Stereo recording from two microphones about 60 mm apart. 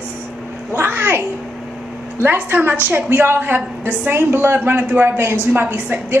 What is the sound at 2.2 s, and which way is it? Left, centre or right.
A woman's voice, right.